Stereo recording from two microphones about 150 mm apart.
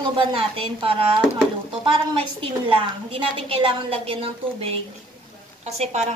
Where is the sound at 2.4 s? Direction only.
35° right (ahead or behind).